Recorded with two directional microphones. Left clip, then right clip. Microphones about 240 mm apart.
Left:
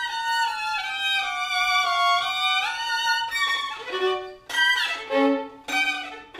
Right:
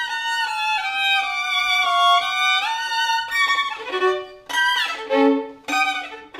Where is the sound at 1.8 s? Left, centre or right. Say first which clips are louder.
Right 5 dB; right.